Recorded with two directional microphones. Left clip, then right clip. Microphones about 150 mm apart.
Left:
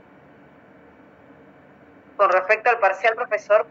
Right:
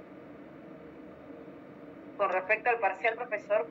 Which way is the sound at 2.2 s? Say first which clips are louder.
Left 11 dB; 80° left.